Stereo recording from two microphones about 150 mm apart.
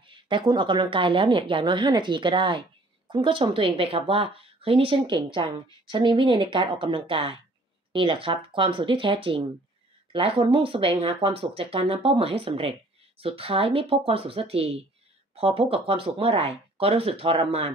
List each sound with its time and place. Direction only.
0.0 s speech: 35° right (ahead or behind)